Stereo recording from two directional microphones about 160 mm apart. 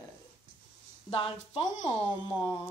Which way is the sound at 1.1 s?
35° left (ahead or behind).